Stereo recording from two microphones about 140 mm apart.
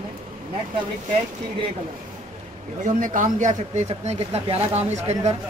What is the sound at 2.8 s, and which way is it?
Speech, 65° right (ahead or behind).